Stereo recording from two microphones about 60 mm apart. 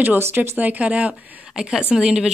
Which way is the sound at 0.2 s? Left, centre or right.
Right.